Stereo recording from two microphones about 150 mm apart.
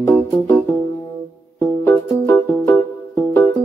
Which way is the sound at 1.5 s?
15° left (ahead or behind).